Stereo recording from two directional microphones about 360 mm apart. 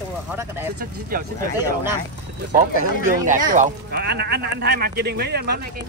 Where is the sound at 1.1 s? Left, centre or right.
Right.